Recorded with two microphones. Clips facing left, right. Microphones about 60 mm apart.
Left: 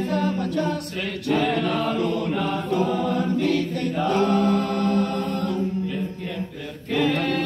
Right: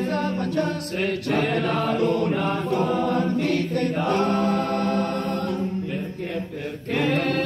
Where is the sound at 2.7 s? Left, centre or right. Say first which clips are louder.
Even; right.